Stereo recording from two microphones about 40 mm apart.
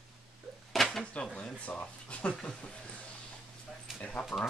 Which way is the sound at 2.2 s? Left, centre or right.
Left.